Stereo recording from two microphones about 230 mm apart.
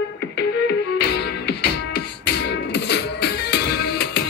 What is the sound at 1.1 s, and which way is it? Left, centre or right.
Music, left.